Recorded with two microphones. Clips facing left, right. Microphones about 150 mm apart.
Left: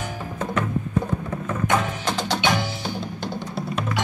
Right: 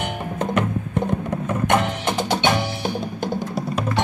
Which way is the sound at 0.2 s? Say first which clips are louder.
Right 3 dB; 20° right (ahead or behind).